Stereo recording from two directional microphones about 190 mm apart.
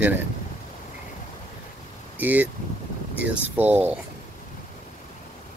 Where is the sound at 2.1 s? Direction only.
10° right (ahead or behind).